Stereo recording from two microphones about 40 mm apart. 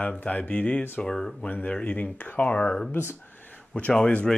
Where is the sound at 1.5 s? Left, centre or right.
Left.